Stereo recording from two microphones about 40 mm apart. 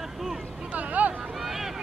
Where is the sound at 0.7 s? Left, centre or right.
Right.